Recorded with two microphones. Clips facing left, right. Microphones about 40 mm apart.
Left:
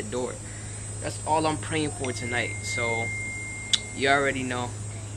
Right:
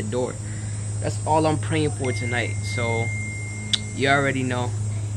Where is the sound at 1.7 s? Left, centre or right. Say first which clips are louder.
Right 4 dB; centre.